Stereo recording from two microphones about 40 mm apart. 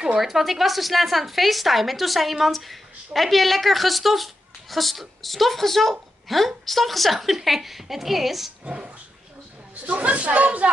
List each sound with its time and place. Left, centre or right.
0.2 s speech: centre
8.6 s dog: right
9.8 s speech: right